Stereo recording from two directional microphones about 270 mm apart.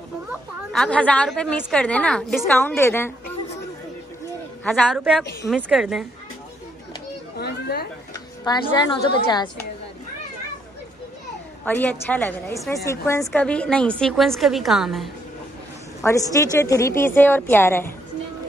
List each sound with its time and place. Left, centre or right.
0.3 s a woman's voice: centre
4.6 s a woman's voice: centre
7.3 s speech: left
8.5 s a woman's voice: centre
11.6 s a woman's voice: centre
16.0 s a woman's voice: centre